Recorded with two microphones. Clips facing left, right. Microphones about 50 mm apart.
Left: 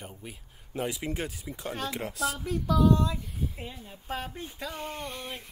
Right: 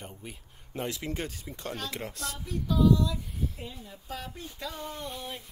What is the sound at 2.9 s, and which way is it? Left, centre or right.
Speech, left.